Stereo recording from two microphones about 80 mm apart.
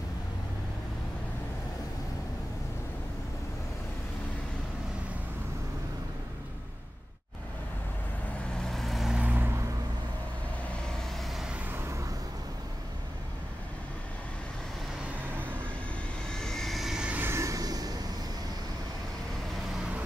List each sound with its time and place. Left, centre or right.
8.5 s vehicle: centre
9.1 s vehicle: right
11.3 s vehicle: centre
16.3 s vehicle: centre
17.3 s vehicle: right